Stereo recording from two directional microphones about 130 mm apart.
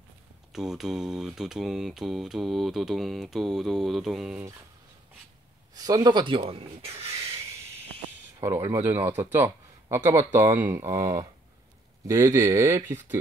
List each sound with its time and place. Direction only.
0.5 s speech: 5° right (ahead or behind)
5.8 s speech: 30° right (ahead or behind); by 7.3 s 50° right (ahead or behind)
8.4 s a man's voice: 20° right (ahead or behind)